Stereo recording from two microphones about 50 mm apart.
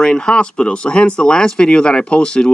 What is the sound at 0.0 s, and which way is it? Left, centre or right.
Speech, centre.